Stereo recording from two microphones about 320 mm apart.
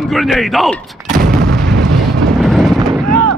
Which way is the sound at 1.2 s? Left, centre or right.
Right.